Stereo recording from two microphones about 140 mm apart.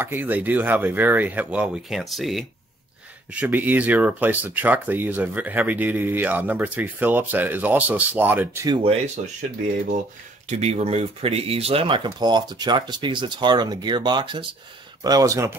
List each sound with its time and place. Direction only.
0.0 s speech: 15° right (ahead or behind)
3.3 s speech: 10° right (ahead or behind)
8.8 s speech: 45° right (ahead or behind)
10.5 s speech: 45° right (ahead or behind); by 15.5 s 25° right (ahead or behind)